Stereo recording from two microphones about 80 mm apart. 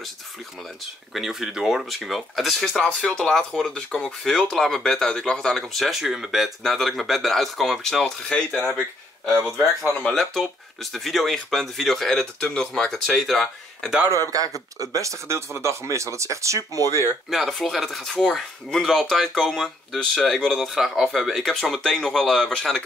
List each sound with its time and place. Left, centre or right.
1.1 s speech: centre
9.2 s speech: centre
14.8 s speech: right
17.3 s speech: centre